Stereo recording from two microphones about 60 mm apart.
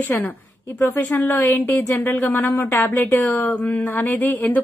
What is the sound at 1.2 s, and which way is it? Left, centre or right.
A woman's voice, left.